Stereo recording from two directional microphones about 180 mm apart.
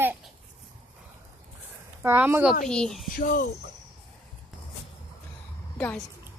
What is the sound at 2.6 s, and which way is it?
Speech, 5° left (ahead or behind).